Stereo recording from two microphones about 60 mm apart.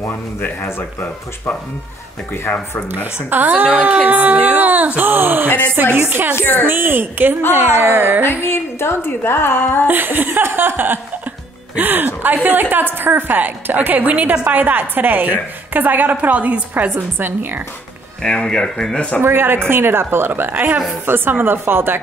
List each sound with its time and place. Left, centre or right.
0.0 s a woman's voice: left
3.3 s a woman's voice: right
6.3 s a woman's voice: left
6.6 s a woman's voice: right
8.2 s a woman's voice: left
9.8 s a woman's voice: right
16.9 s a woman's voice: right
18.2 s speech: centre
19.2 s a woman's voice: right